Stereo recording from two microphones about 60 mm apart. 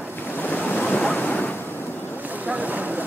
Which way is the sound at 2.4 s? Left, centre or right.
Right.